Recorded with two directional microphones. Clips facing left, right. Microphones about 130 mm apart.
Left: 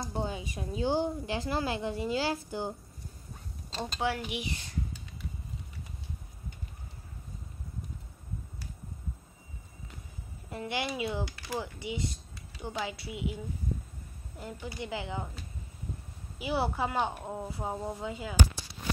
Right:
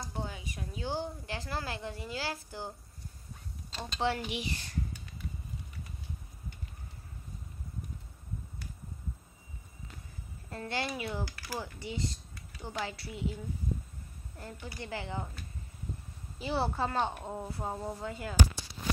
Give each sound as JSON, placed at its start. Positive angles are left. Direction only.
{"t": 0.1, "sound": "speech", "side_deg": 25}
{"t": 4.0, "sound": "speech", "side_deg": 10}
{"t": 10.5, "sound": "speech", "side_deg": 15}